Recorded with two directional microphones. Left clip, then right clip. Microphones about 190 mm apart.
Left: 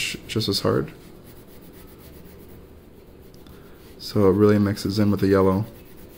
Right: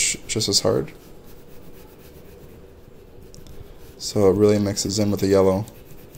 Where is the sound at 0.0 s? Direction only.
25° left (ahead or behind).